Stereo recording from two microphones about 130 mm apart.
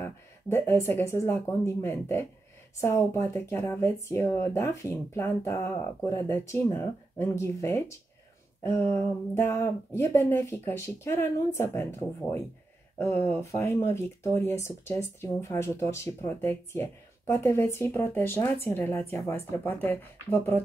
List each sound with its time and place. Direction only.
0.0 s speech: 20° left (ahead or behind)
8.9 s speech: 20° left (ahead or behind)